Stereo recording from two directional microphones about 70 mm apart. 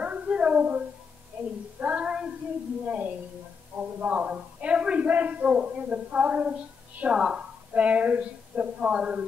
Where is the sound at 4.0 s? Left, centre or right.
Right.